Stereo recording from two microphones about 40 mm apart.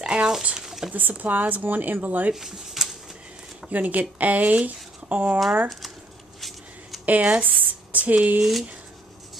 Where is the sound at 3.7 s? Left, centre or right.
Right.